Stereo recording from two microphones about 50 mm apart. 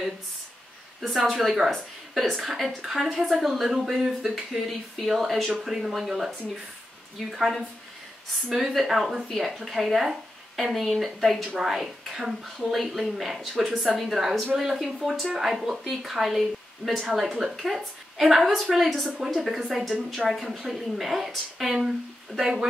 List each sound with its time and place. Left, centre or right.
1.0 s a woman's voice: centre
11.5 s a woman's voice: centre